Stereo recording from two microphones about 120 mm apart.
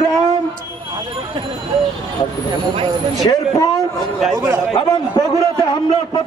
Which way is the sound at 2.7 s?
45° right (ahead or behind).